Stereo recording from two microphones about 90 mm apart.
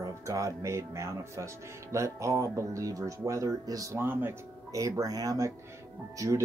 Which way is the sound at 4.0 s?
25° right (ahead or behind).